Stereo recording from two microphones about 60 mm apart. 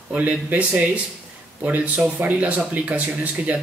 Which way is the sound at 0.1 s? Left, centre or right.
Right.